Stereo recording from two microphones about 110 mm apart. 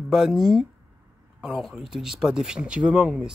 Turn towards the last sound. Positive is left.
turn(degrees=-5)  # may be behind; listen again after turning